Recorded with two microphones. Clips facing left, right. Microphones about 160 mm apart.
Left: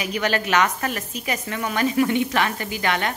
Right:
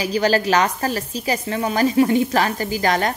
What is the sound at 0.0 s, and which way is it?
A woman's voice, 35° right (ahead or behind).